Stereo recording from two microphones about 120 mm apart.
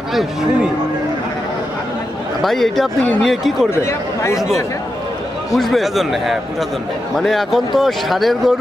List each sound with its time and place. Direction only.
0.1 s speech: centre (ahead or behind)
2.4 s speech: centre (ahead or behind)
3.7 s speech: 25° left (ahead or behind)
5.5 s speech: centre (ahead or behind)